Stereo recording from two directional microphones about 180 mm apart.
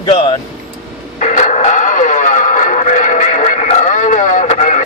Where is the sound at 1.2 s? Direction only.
40° left (ahead or behind).